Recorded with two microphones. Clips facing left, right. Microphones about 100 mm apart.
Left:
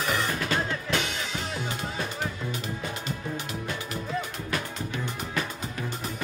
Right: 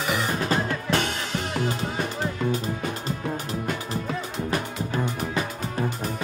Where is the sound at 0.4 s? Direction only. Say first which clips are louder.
Right 3 dB; 40° right (ahead or behind).